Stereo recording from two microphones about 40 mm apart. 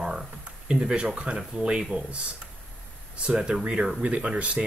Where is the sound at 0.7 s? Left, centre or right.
Centre.